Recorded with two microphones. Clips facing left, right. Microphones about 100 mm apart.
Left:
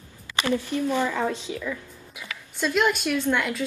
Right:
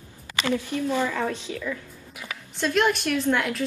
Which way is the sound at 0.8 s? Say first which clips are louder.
Even; 15° left (ahead or behind).